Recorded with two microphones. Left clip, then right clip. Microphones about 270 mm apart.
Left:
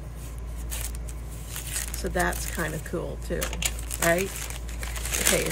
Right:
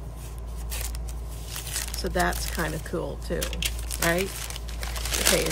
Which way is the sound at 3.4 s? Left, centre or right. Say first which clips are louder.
Left 1 dB; centre.